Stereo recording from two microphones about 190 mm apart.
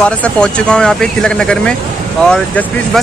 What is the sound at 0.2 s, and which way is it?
Speech, 5° left (ahead or behind).